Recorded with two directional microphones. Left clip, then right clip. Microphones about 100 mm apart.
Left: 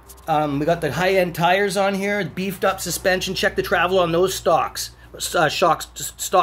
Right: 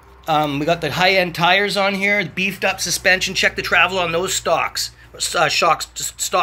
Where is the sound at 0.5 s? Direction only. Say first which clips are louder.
Right 2 dB; 20° left (ahead or behind); by 6.4 s 65° left (ahead or behind).